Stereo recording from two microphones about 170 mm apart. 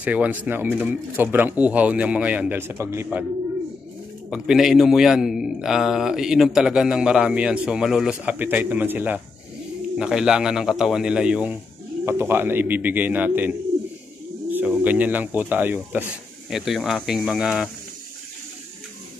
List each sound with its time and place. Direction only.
0.0 s speech: 10° right (ahead or behind)
4.3 s a man's voice: centre (ahead or behind)